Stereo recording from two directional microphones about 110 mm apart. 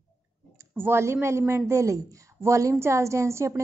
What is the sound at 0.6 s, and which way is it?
A woman's voice, 20° right (ahead or behind).